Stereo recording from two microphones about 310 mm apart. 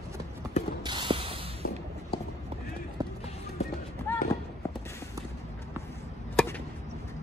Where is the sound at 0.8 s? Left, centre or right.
Centre.